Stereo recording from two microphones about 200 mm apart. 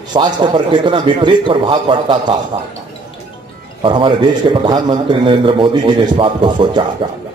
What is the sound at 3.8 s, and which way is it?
A man's voice, 25° right (ahead or behind).